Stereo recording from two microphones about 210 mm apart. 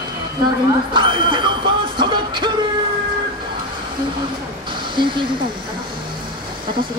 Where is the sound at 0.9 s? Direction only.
25° right (ahead or behind).